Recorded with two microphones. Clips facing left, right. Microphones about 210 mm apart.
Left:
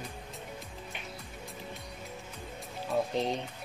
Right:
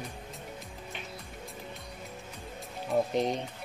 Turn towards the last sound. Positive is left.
turn(degrees=-15)  # may be behind; listen again after turning